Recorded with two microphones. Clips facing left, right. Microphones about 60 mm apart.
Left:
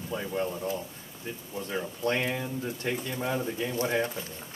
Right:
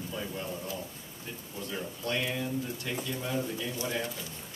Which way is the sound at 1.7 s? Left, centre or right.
Left.